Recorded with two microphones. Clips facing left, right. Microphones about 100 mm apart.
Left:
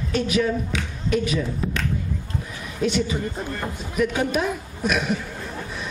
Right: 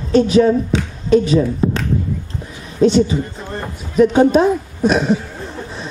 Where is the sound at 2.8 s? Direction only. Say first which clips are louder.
Right 10 dB; 30° right (ahead or behind).